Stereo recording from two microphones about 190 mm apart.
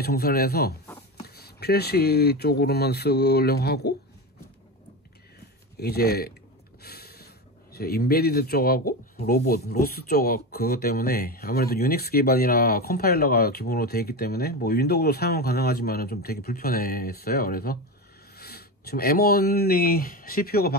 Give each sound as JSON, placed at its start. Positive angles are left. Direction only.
{"t": 0.0, "sound": "speech", "side_deg": 55}
{"t": 5.8, "sound": "speech", "side_deg": 55}
{"t": 6.8, "sound": "a sound", "side_deg": 55}
{"t": 7.7, "sound": "speech", "side_deg": 55}